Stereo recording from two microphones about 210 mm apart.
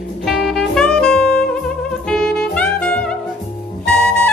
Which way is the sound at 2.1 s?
5° left (ahead or behind).